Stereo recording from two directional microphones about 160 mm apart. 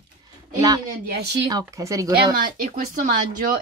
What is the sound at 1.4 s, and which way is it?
Speech, 20° right (ahead or behind).